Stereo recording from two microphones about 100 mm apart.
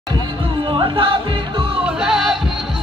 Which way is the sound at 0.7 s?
55° right (ahead or behind).